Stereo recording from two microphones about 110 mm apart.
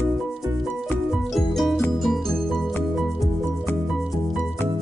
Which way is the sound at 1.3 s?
Centre (ahead or behind).